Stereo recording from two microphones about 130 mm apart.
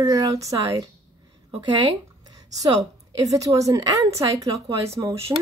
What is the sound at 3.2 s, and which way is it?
A woman's voice, 25° right (ahead or behind).